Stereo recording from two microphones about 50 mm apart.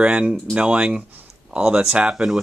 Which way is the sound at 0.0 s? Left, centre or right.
Right.